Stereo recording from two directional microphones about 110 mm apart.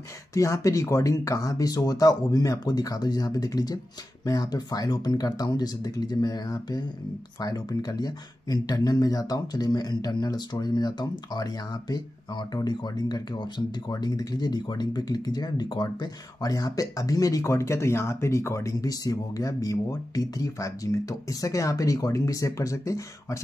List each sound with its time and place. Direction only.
0.3 s speech: 30° left (ahead or behind)